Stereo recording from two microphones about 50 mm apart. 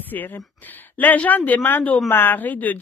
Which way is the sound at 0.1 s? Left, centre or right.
Left.